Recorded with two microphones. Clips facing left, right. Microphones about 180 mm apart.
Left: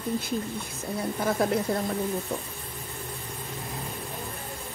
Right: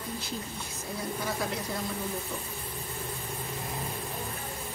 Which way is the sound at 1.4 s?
55° left (ahead or behind).